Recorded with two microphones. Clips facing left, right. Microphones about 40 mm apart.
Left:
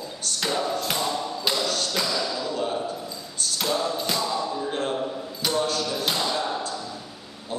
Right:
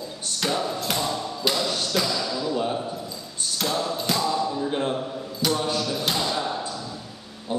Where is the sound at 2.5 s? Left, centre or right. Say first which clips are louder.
Right 1 dB; centre.